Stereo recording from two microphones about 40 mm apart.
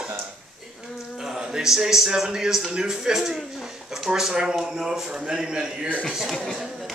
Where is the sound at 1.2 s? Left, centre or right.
Centre.